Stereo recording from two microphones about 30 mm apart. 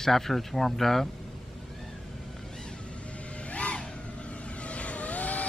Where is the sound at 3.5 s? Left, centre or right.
Left.